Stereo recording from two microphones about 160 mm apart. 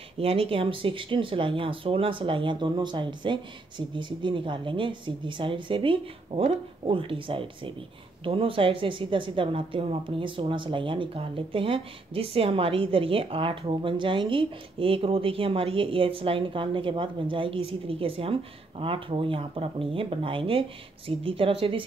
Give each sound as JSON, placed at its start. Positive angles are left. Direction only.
{"t": 0.2, "sound": "a woman's voice", "side_deg": -35}